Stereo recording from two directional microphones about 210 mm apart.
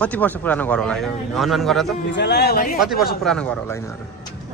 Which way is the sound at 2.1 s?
55° left (ahead or behind).